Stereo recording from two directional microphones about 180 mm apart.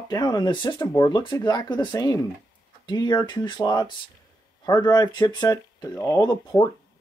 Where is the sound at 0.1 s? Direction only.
20° left (ahead or behind).